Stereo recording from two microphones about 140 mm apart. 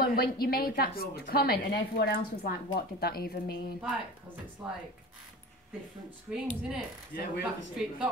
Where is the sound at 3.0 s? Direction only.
90° left.